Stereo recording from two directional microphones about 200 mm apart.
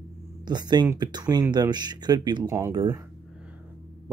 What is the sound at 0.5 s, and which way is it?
Speech, 20° right (ahead or behind).